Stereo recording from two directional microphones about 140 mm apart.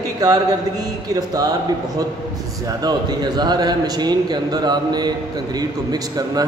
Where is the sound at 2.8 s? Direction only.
30° right (ahead or behind).